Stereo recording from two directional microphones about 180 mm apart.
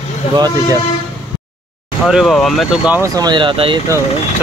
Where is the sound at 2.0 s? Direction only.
Centre (ahead or behind).